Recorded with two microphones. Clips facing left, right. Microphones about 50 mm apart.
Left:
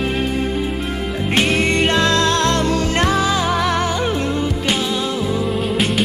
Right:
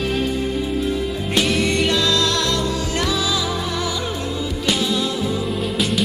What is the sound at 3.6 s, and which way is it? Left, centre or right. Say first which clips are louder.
Music: left 6 dB; left.